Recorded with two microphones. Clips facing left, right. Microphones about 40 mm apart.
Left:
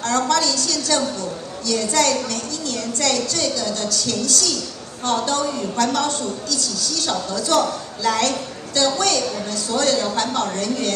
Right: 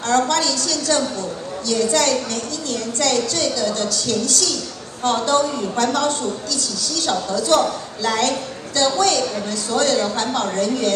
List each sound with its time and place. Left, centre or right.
0.1 s a woman's voice: right